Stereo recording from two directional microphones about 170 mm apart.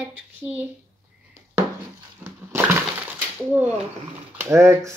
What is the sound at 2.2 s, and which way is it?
Breaking, 15° right (ahead or behind).